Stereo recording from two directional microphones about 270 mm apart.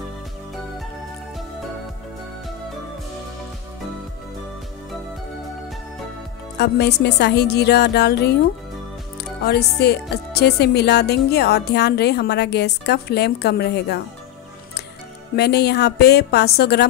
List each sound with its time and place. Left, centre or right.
6.6 s speech: left
15.3 s speech: left